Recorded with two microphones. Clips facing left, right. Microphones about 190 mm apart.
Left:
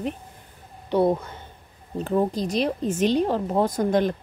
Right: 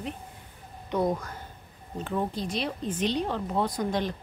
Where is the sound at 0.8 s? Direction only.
30° left (ahead or behind).